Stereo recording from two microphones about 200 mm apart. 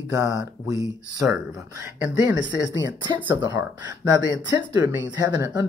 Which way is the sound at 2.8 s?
20° right (ahead or behind).